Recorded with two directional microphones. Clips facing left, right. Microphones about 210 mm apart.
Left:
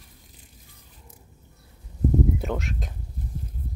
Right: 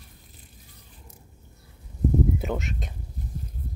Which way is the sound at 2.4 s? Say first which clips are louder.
Even; centre (ahead or behind).